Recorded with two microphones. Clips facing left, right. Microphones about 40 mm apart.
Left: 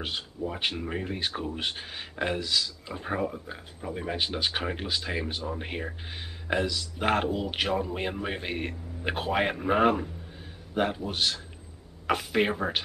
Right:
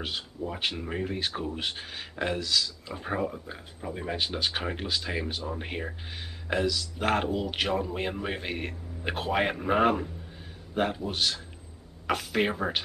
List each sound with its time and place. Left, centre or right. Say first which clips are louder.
0.0 s speech: left 1 dB; centre